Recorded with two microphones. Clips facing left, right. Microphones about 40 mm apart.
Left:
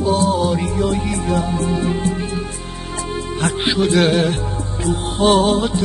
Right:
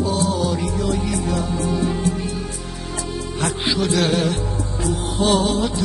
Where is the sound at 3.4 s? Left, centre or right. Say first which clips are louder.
Left 3 dB; left.